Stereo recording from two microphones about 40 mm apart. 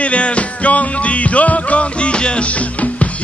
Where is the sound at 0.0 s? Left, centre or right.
Left.